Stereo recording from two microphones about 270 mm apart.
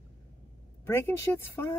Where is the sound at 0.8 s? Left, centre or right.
Centre.